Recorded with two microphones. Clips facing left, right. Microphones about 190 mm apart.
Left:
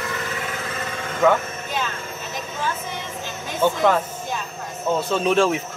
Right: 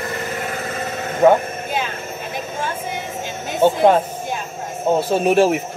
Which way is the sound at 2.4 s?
50° right (ahead or behind).